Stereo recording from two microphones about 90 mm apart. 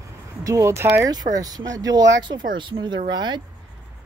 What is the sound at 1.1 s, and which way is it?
Speech, 45° right (ahead or behind).